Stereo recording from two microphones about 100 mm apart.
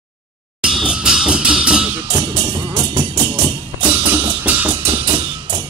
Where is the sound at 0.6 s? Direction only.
10° right (ahead or behind).